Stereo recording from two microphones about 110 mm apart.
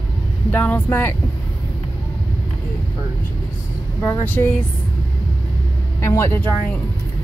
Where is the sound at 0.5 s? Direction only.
15° left (ahead or behind).